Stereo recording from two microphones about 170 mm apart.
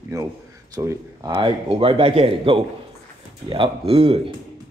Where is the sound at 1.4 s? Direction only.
35° right (ahead or behind).